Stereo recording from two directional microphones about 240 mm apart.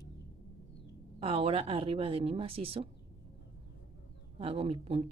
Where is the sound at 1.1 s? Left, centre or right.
Right.